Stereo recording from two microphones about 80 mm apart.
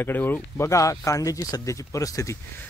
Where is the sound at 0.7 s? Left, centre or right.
Left.